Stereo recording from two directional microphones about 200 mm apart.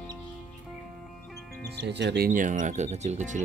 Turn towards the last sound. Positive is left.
turn(degrees=-35)  # may be behind; listen again after turning